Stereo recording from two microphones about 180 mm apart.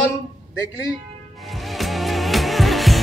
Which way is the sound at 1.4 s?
Centre (ahead or behind).